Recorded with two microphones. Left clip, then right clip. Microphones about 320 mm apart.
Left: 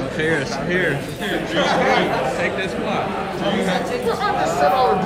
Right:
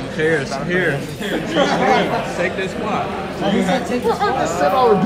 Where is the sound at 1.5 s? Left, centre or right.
Right.